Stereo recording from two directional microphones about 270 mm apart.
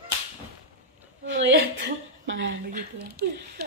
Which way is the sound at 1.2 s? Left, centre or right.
Right.